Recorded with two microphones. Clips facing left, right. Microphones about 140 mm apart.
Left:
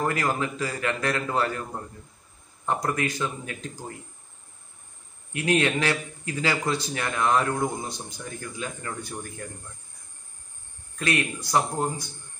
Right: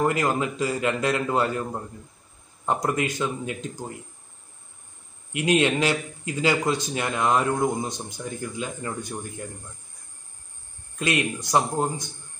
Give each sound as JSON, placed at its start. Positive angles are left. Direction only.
{"t": 0.0, "sound": "speech", "side_deg": -20}
{"t": 5.3, "sound": "speech", "side_deg": -20}
{"t": 11.0, "sound": "speech", "side_deg": -20}